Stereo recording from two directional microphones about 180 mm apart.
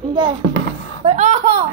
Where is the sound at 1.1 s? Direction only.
40° right (ahead or behind).